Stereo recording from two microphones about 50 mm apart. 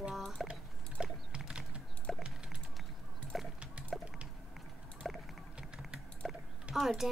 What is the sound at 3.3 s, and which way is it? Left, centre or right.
Pig, centre.